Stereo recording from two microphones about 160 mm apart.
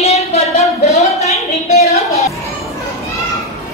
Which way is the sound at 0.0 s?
40° left (ahead or behind).